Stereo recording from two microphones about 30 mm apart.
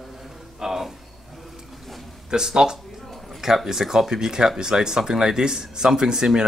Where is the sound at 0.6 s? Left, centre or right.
Centre.